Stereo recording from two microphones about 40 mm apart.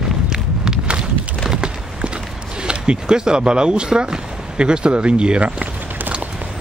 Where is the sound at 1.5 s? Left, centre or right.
Right.